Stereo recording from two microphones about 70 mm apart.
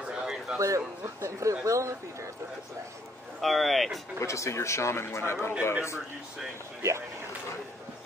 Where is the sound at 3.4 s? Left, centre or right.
Centre.